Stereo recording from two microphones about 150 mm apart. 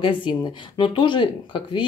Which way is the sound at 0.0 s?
35° left (ahead or behind).